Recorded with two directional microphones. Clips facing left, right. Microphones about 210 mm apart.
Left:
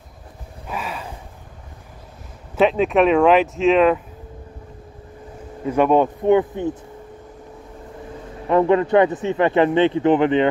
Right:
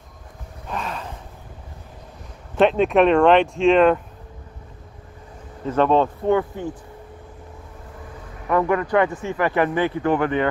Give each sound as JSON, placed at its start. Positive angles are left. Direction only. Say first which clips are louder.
{"t": 0.7, "sound": "a sound", "louder": "even", "side_deg": 5}
{"t": 2.5, "sound": "speech", "louder": "even", "side_deg": 0}
{"t": 5.7, "sound": "speech", "louder": "left 2 dB", "side_deg": 10}
{"t": 8.5, "sound": "speech", "louder": "left 4 dB", "side_deg": 25}